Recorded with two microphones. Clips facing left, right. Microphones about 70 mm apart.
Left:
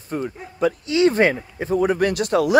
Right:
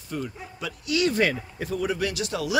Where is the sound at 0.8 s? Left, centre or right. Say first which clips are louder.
Left 5 dB; left.